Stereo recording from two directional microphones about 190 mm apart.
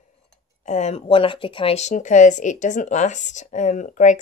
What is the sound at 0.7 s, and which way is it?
Speech, 35° left (ahead or behind).